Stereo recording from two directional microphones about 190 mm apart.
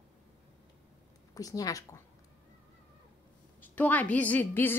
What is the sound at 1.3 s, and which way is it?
Speech, 20° left (ahead or behind).